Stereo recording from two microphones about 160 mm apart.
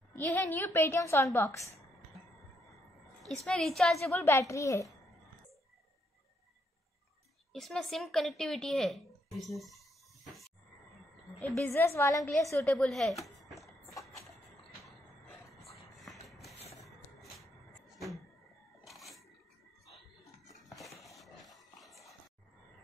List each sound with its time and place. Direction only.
0.1 s a woman's voice: 10° left (ahead or behind)
3.2 s speech: centre (ahead or behind)
4.1 s a woman's voice: 15° left (ahead or behind)
7.5 s speech: centre (ahead or behind)
9.6 s a sound: centre (ahead or behind)
11.4 s speech: 5° left (ahead or behind)
11.7 s a woman's voice: 15° left (ahead or behind)
12.6 s speech: 5° left (ahead or behind)
16.3 s a sound: centre (ahead or behind)
20.6 s a sound: centre (ahead or behind)